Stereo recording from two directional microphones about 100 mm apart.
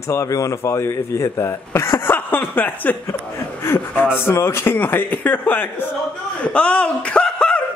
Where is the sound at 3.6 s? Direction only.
20° left (ahead or behind).